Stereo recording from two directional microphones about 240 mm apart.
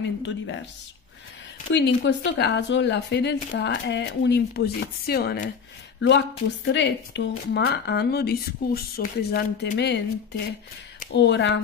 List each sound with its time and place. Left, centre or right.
0.2 s speech: left
1.7 s speech: left
11.1 s speech: left